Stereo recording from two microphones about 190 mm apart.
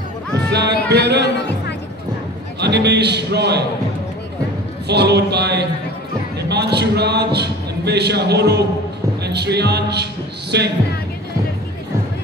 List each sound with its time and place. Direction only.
0.3 s music: 65° right (ahead or behind)
0.8 s a man's voice: 60° right (ahead or behind)
2.6 s a man's voice: 60° right (ahead or behind)
4.8 s a man's voice: 60° right (ahead or behind)